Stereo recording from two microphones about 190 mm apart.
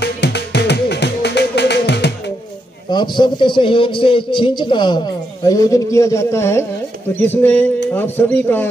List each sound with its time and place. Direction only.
0.0 s music: 60° left (ahead or behind)
2.9 s a man's voice: 25° left (ahead or behind)